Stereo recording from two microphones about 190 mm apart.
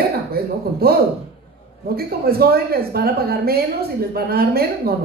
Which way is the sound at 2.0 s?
55° right (ahead or behind).